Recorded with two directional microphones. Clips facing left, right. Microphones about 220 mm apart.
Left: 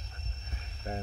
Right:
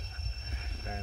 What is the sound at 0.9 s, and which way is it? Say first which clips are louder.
Speech: left 5 dB; 40° left (ahead or behind).